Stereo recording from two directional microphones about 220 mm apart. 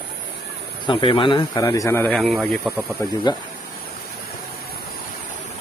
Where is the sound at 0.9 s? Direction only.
20° left (ahead or behind); by 2.8 s centre (ahead or behind).